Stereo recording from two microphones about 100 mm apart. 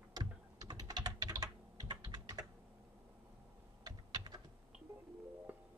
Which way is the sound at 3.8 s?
45° right (ahead or behind).